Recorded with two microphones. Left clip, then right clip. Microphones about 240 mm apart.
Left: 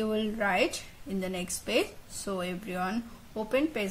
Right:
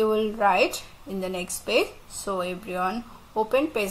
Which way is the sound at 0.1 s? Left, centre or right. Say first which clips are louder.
Right 7 dB; centre.